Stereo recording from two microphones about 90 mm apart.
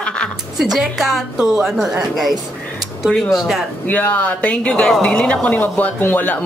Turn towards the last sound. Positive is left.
turn(degrees=20)  # may be behind; listen again after turning